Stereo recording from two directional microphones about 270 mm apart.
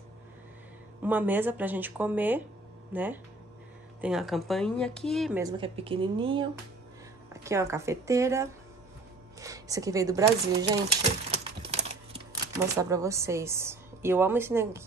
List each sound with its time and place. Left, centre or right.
1.0 s speech: centre
5.4 s speech: centre
7.4 s speech: centre
11.2 s a sound: right